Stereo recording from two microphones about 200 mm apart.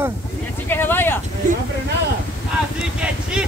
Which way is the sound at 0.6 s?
10° left (ahead or behind).